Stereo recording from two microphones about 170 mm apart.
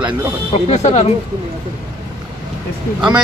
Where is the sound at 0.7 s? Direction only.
40° left (ahead or behind).